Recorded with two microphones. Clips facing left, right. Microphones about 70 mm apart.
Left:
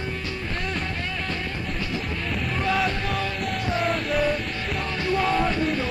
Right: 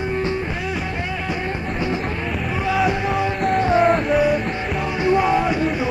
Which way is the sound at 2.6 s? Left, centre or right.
Centre.